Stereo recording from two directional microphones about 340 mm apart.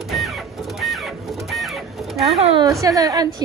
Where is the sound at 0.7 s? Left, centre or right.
Centre.